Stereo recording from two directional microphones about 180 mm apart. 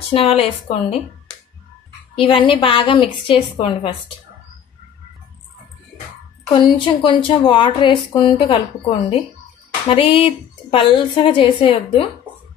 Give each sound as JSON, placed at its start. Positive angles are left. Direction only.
{"t": 0.1, "sound": "speech", "side_deg": 30}
{"t": 2.1, "sound": "a woman's voice", "side_deg": 30}
{"t": 6.5, "sound": "a woman's voice", "side_deg": 25}
{"t": 9.9, "sound": "a woman's voice", "side_deg": 30}